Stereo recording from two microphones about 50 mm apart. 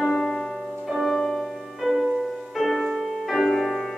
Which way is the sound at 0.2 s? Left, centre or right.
Centre.